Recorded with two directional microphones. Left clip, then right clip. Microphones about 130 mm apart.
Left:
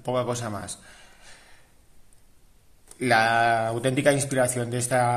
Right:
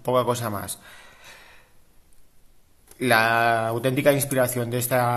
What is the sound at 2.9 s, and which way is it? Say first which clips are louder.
Speech: right 1 dB; 20° right (ahead or behind).